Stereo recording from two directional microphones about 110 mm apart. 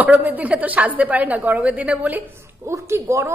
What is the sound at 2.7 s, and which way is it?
Speech, 25° right (ahead or behind).